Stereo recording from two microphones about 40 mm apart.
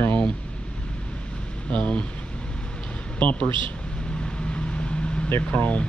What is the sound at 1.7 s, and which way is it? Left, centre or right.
Speech, left.